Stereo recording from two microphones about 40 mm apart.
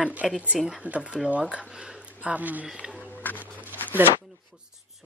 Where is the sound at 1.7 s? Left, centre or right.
Centre.